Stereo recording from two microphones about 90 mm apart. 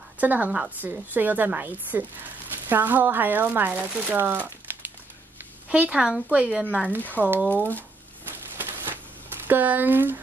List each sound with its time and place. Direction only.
0.2 s a woman's voice: 15° right (ahead or behind)
7.0 s speech: 20° left (ahead or behind)
8.5 s a sound: 25° right (ahead or behind)